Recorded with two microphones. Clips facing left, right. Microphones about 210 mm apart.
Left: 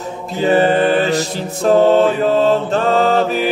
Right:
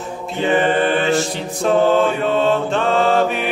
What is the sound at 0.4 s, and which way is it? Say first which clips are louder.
Mantra: left 3 dB; 40° left (ahead or behind).